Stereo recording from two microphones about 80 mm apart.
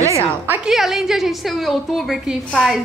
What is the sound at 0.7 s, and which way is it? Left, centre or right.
A woman's voice, centre.